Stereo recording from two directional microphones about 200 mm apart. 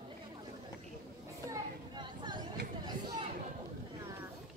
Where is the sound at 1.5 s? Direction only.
20° right (ahead or behind).